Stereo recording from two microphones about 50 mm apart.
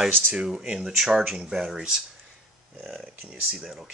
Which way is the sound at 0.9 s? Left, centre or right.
Centre.